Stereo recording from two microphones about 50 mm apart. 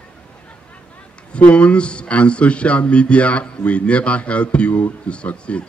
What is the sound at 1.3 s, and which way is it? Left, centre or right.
Speech, left.